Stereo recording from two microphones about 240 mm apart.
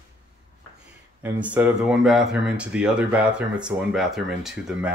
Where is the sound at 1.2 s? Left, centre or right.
Centre.